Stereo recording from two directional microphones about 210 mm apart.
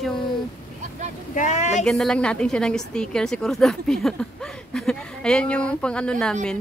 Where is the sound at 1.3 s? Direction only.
35° left (ahead or behind).